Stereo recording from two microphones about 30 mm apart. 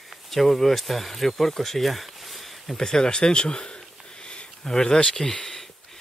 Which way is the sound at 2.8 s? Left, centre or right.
Left.